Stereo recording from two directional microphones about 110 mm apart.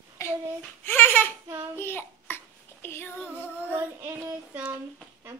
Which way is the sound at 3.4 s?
15° right (ahead or behind).